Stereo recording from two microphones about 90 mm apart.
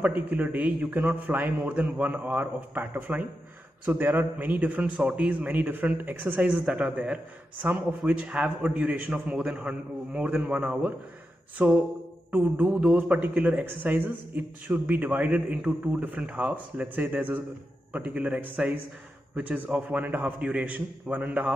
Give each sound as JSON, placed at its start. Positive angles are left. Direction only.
{"t": 0.0, "sound": "a man's voice", "side_deg": -15}
{"t": 13.2, "sound": "a man's voice", "side_deg": -15}